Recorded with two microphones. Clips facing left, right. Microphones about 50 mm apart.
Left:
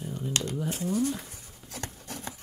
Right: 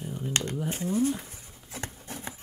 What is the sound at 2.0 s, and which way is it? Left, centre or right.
Rub, right.